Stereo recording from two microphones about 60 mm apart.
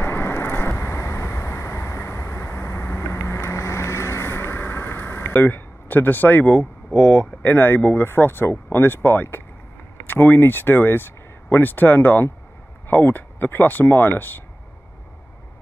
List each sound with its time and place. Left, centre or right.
0.0 s vehicle: left
5.2 s speech: left
6.5 s speech: left